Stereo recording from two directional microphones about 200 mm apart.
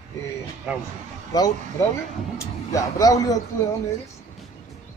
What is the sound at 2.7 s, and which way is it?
Speech, 15° left (ahead or behind).